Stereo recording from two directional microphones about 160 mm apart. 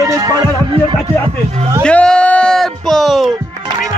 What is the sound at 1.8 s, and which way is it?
Speech, 5° left (ahead or behind).